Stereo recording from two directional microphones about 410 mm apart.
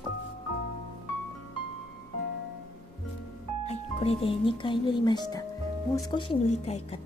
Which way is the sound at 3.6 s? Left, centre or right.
Centre.